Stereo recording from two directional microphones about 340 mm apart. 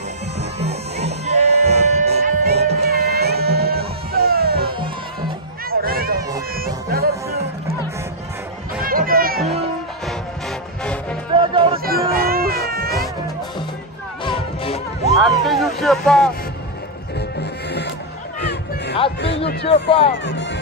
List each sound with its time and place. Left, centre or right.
0.4 s music: centre
5.7 s run: right
6.5 s music: right
8.8 s music: right
10.8 s music: centre
11.3 s music: centre
11.8 s a sound: right
12.6 s cat: right
14.2 s music: centre
15.1 s a sound: centre
18.4 s music: left
19.2 s a sound: left
19.7 s speech: centre